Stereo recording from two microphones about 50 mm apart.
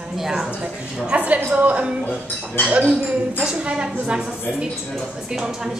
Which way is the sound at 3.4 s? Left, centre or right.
Right.